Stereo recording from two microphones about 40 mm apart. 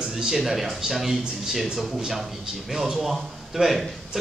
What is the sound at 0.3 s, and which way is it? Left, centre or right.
A man's voice, centre.